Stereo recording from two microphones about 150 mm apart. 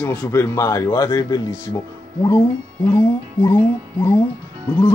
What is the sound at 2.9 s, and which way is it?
A man's voice, 20° left (ahead or behind).